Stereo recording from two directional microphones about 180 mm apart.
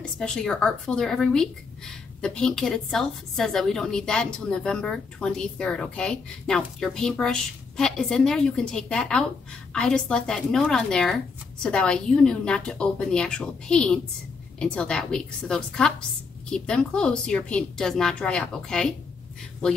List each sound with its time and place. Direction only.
0.0 s a woman's voice: 5° left (ahead or behind)